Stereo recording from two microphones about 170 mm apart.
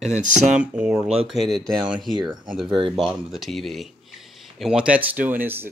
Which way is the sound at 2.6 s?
30° right (ahead or behind).